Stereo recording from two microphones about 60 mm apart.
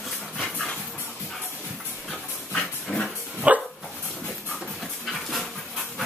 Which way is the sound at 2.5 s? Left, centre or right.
Centre.